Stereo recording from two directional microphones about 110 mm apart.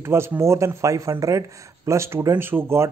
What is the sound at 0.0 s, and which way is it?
Speech, 25° right (ahead or behind).